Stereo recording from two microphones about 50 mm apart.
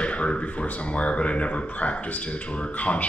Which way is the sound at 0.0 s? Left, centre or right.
Left.